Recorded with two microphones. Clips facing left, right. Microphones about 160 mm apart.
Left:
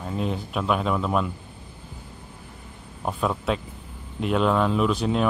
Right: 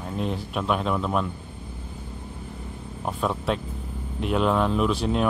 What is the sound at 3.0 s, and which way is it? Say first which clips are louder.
Speech: left 1 dB; centre (ahead or behind).